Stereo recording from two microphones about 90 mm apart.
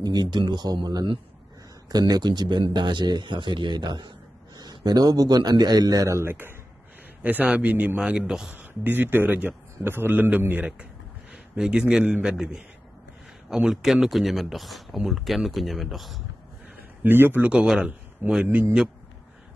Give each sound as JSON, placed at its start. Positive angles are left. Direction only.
{"t": 0.0, "sound": "a man's voice", "side_deg": -50}
{"t": 7.2, "sound": "a man's voice", "side_deg": -20}
{"t": 8.5, "sound": "a man's voice", "side_deg": -20}
{"t": 11.5, "sound": "a man's voice", "side_deg": -10}
{"t": 17.0, "sound": "a man's voice", "side_deg": -25}
{"t": 17.4, "sound": "a man's voice", "side_deg": -10}